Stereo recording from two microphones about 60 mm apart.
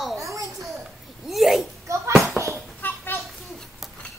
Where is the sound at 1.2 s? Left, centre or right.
Centre.